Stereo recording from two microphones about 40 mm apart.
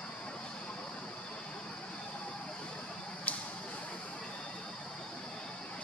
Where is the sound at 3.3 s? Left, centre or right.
Left.